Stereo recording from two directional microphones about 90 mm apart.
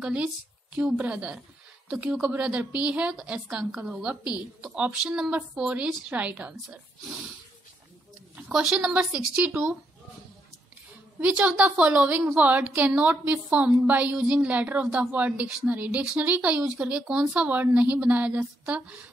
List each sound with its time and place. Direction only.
0.0 s a woman's voice: 15° right (ahead or behind)
8.4 s a woman's voice: 10° right (ahead or behind)
11.1 s a woman's voice: 15° right (ahead or behind)